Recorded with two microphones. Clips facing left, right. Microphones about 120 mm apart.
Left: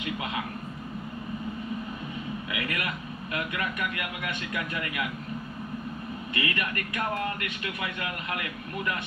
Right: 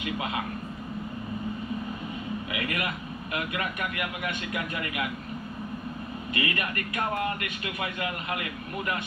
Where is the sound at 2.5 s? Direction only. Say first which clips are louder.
Right 1 dB; 25° right (ahead or behind).